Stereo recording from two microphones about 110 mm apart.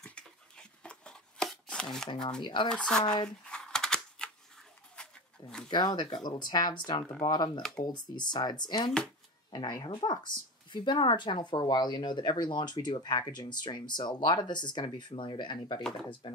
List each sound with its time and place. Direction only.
0.0 s chopping: 10° left (ahead or behind)
2.4 s speech: 45° left (ahead or behind)
2.7 s speech: 5° left (ahead or behind)
3.4 s typing: 5° left (ahead or behind)
4.9 s a sound: 10° left (ahead or behind)
5.7 s speech: 40° left (ahead or behind)